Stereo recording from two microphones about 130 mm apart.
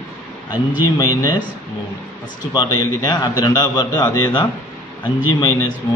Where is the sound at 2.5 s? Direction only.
35° left (ahead or behind).